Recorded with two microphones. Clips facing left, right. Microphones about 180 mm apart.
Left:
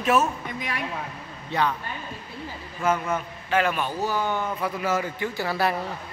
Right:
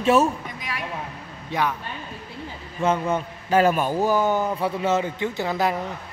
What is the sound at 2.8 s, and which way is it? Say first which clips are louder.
A man's voice: right 3 dB; 25° right (ahead or behind).